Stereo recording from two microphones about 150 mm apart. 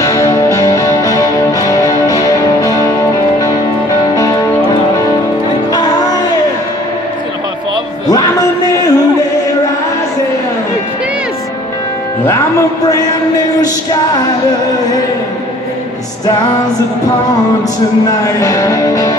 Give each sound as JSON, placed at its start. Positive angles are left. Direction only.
{"t": 0.0, "sound": "music", "side_deg": 20}
{"t": 8.1, "sound": "music", "side_deg": 25}
{"t": 12.3, "sound": "music", "side_deg": 20}
{"t": 18.2, "sound": "music", "side_deg": 20}